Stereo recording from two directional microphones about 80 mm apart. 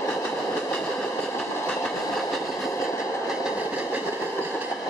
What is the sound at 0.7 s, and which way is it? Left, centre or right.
Train, centre.